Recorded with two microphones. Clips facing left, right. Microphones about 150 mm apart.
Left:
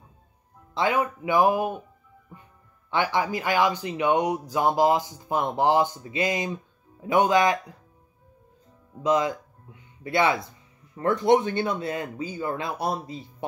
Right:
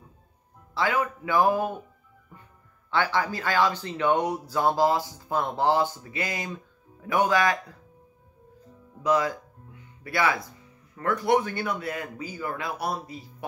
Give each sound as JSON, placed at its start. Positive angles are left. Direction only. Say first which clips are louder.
{"t": 0.7, "sound": "speech", "louder": "left 2 dB", "side_deg": 20}
{"t": 2.9, "sound": "speech", "louder": "left 1 dB", "side_deg": 15}
{"t": 9.0, "sound": "speech", "louder": "left 1 dB", "side_deg": 20}